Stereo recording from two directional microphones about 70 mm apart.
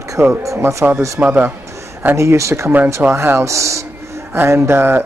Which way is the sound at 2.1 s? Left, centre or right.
Right.